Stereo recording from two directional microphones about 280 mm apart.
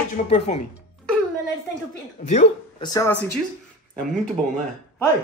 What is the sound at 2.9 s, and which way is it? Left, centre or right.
Speech, centre.